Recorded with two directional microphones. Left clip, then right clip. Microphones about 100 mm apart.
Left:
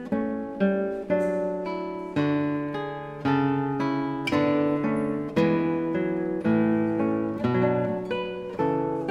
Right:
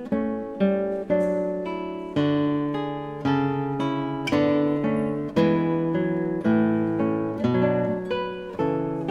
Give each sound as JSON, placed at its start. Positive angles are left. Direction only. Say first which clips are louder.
{"t": 0.1, "sound": "music", "louder": "right 1 dB", "side_deg": -25}
{"t": 2.1, "sound": "guitar", "louder": "right 3 dB", "side_deg": -25}
{"t": 8.5, "sound": "music", "louder": "even", "side_deg": -20}